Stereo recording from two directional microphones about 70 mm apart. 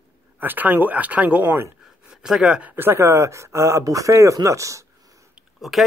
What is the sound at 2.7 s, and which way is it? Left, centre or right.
Speech, right.